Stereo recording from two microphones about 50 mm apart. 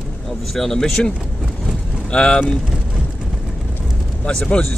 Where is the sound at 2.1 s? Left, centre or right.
Centre.